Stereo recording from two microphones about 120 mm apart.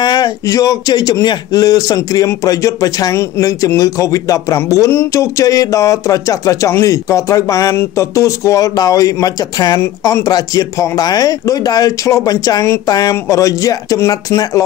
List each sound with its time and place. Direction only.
0.0 s speech: 35° left (ahead or behind)